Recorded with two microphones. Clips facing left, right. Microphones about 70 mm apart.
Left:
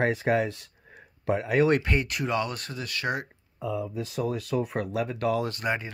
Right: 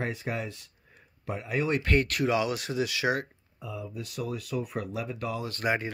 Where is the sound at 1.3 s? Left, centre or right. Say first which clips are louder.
Left 7 dB; left.